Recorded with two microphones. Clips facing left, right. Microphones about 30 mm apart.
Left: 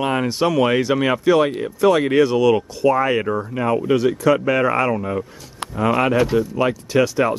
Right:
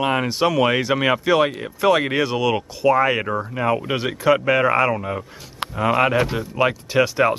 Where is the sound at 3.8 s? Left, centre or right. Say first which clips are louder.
Left 3 dB; right.